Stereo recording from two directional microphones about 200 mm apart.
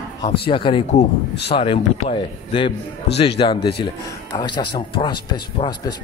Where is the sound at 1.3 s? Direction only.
55° left (ahead or behind).